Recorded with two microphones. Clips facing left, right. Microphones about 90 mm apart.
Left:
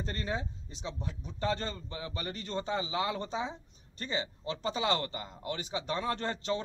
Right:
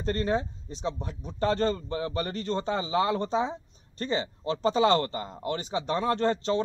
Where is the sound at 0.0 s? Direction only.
40° right (ahead or behind).